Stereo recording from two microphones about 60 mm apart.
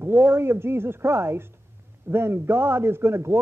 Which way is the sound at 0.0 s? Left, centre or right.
Right.